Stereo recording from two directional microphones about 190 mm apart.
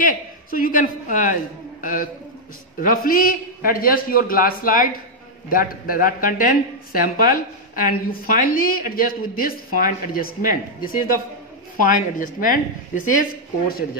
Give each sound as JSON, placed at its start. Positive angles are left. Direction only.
{"t": 0.0, "sound": "a man's voice", "side_deg": 45}